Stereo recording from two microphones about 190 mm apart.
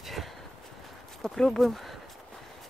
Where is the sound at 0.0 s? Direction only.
Centre (ahead or behind).